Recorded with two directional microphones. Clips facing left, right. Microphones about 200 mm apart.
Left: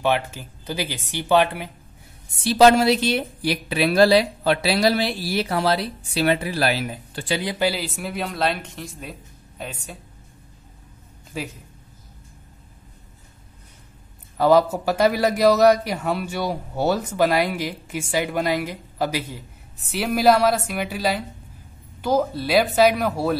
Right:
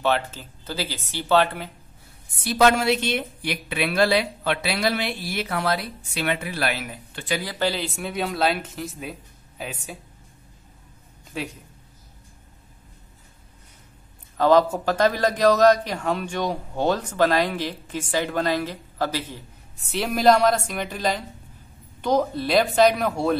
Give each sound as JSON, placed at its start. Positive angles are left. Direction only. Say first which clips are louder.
{"t": 0.0, "sound": "a man's voice", "louder": "left 1 dB", "side_deg": 15}
{"t": 2.3, "sound": "a woman's voice", "louder": "left 5 dB", "side_deg": 30}
{"t": 7.5, "sound": "speech", "louder": "left 2 dB", "side_deg": 10}
{"t": 11.3, "sound": "speech", "louder": "even", "side_deg": 0}
{"t": 14.3, "sound": "a man's voice", "louder": "left 1 dB", "side_deg": 10}